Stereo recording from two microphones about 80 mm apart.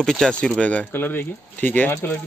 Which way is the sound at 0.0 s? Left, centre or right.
Centre.